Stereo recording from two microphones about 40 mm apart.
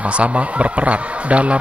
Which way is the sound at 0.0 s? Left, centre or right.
Right.